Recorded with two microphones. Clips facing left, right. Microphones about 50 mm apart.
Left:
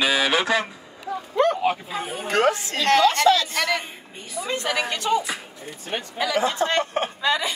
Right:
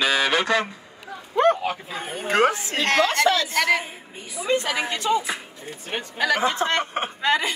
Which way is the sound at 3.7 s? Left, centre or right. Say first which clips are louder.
Right 4 dB; centre.